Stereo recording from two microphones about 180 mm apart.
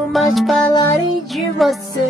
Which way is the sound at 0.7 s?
20° left (ahead or behind).